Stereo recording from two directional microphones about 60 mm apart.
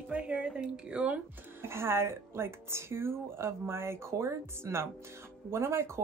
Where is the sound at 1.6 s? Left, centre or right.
Right.